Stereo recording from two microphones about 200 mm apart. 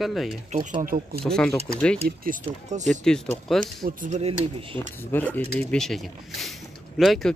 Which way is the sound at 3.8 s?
45° right (ahead or behind).